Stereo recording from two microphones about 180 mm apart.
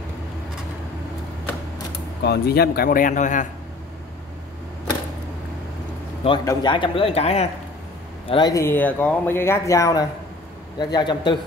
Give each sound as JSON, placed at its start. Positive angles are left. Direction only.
{"t": 2.2, "sound": "speech", "side_deg": 65}
{"t": 6.2, "sound": "a man's voice", "side_deg": 20}
{"t": 8.3, "sound": "a man's voice", "side_deg": 25}